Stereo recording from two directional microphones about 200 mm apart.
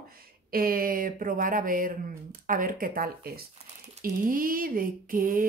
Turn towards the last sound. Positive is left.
turn(degrees=-45)  # may be behind; listen again after turning